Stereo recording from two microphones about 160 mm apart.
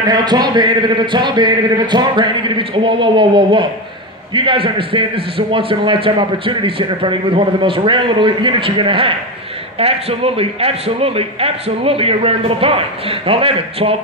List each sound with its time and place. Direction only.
0.0 s a man's voice: 25° right (ahead or behind)